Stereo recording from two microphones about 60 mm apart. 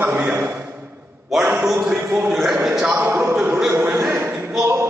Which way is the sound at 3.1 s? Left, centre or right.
Right.